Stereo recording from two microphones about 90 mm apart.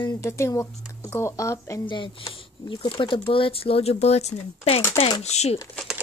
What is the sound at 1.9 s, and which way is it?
Speech, 65° left (ahead or behind).